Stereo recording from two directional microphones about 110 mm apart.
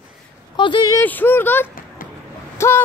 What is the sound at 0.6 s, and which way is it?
Speech, 45° left (ahead or behind).